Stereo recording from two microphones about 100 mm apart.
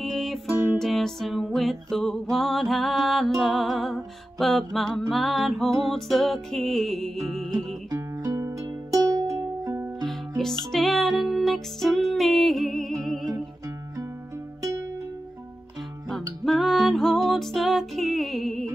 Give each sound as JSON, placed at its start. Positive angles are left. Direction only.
{"t": 0.0, "sound": "music", "side_deg": 0}
{"t": 7.9, "sound": "music", "side_deg": -30}
{"t": 10.0, "sound": "music", "side_deg": 5}
{"t": 16.4, "sound": "music", "side_deg": 0}